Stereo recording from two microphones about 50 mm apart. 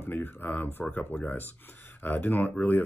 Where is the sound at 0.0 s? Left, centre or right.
Left.